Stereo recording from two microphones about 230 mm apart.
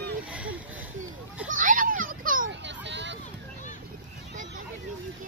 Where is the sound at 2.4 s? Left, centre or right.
Right.